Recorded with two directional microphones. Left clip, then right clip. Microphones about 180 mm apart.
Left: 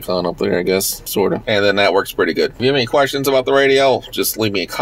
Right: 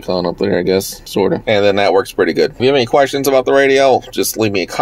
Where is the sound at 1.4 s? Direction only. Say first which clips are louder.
Right 2 dB; 35° right (ahead or behind).